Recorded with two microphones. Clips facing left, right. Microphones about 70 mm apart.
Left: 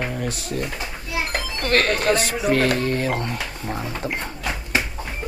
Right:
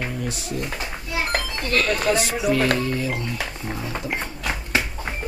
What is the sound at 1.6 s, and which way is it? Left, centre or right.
Speech, left.